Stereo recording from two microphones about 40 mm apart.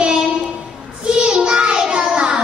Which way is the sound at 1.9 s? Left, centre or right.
Right.